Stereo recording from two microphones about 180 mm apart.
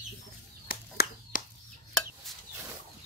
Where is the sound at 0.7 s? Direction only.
55° left (ahead or behind).